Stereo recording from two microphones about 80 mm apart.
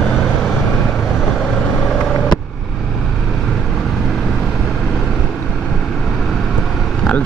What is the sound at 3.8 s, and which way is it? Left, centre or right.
Vehicle, centre.